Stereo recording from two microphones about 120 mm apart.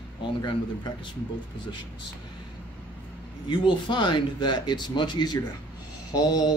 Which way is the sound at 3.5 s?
40° left (ahead or behind).